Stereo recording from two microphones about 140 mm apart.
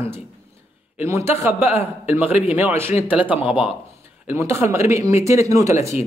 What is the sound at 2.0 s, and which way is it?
A man's voice, 10° right (ahead or behind).